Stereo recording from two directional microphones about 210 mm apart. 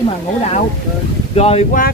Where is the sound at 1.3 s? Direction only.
30° left (ahead or behind).